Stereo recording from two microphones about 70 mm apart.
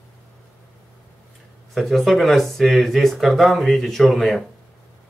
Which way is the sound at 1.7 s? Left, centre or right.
Centre.